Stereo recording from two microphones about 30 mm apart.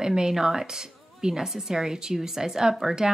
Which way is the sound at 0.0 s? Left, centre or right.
Right.